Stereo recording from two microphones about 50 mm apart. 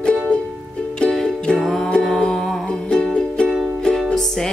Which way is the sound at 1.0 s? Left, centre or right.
Centre.